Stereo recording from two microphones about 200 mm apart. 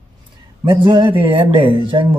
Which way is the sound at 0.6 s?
25° right (ahead or behind).